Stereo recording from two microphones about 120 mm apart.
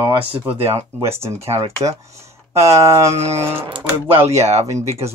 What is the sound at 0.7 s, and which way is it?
Speech, 20° right (ahead or behind).